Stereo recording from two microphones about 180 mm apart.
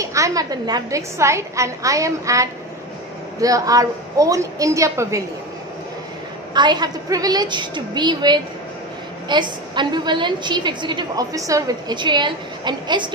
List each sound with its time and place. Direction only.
0.0 s a woman's voice: 15° right (ahead or behind)
6.5 s a woman's voice: 25° right (ahead or behind)